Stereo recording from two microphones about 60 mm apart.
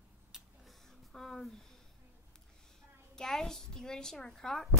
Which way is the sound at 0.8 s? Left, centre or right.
Centre.